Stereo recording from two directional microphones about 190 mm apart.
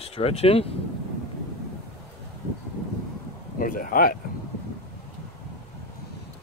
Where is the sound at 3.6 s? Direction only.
45° left (ahead or behind).